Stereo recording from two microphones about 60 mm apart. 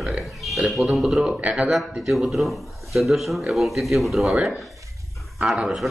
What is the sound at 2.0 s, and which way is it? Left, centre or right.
A man's voice, centre.